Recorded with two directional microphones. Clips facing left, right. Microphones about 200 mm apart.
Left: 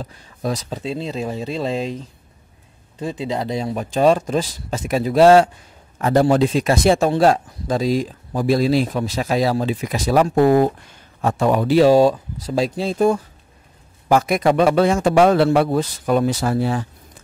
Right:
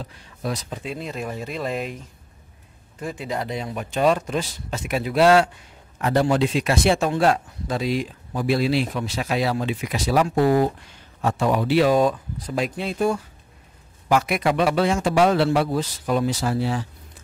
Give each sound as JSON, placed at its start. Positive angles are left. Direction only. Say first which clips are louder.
{"t": 0.0, "sound": "speech", "louder": "left 4 dB", "side_deg": 40}
{"t": 0.8, "sound": "a man's voice", "louder": "left 5 dB", "side_deg": 30}